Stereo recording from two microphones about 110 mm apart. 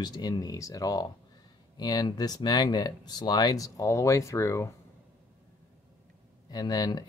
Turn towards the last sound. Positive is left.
turn(degrees=40)  # may be behind; listen again after turning